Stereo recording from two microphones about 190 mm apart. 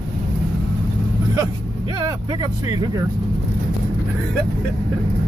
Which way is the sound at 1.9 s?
20° right (ahead or behind).